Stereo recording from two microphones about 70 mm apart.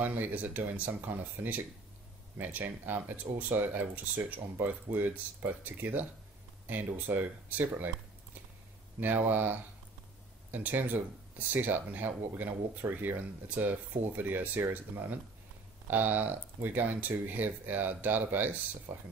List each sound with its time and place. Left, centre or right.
0.0 s speech: right
9.0 s speech: right